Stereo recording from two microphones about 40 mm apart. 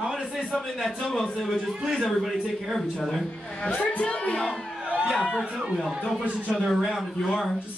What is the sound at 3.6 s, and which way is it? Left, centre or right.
Speech, left.